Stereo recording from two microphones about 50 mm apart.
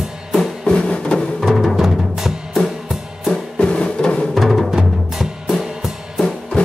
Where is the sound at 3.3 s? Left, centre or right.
Centre.